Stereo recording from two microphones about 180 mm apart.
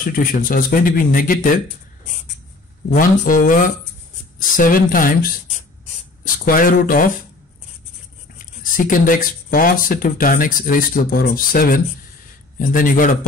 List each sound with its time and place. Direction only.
0.0 s speech: 50° left (ahead or behind)
2.9 s speech: 50° left (ahead or behind)
8.7 s speech: 50° left (ahead or behind)